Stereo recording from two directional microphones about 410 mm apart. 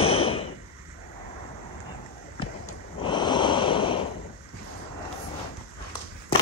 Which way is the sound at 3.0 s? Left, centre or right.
Centre.